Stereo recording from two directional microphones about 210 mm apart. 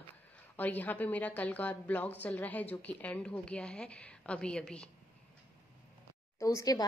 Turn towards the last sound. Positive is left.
turn(degrees=15)  # may be behind; listen again after turning